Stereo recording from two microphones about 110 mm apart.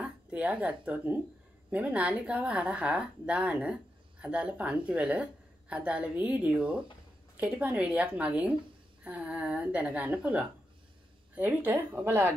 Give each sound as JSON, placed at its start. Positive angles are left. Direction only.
{"t": 0.0, "sound": "a woman's voice", "side_deg": -10}